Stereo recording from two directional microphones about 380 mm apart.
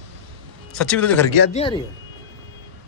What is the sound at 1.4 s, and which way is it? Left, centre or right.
Speech, centre.